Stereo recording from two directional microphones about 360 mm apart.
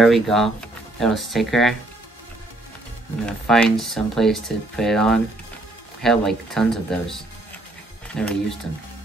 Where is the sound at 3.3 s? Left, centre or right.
Centre.